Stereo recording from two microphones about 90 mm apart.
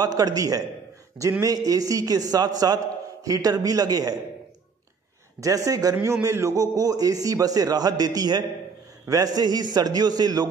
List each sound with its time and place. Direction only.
0.0 s a man's voice: 45° right (ahead or behind)
5.4 s a man's voice: 40° right (ahead or behind)